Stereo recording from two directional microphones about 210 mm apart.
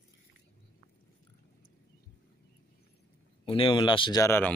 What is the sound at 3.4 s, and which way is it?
Speech, 25° left (ahead or behind).